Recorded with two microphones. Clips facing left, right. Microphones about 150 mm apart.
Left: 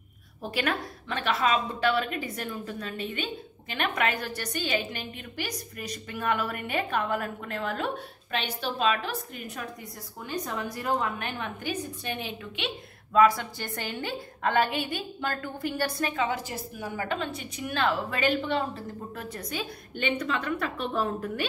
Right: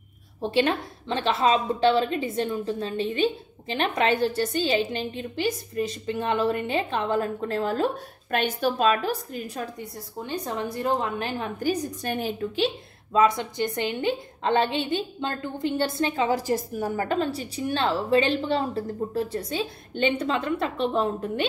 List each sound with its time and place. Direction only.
0.4 s a woman's voice: 25° right (ahead or behind)
8.3 s a woman's voice: 45° right (ahead or behind)
13.1 s a woman's voice: 20° right (ahead or behind)